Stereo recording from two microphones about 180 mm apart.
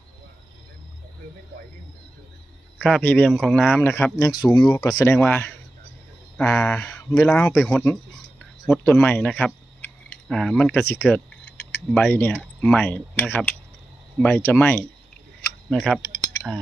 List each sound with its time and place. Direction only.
2.8 s speech: 10° left (ahead or behind)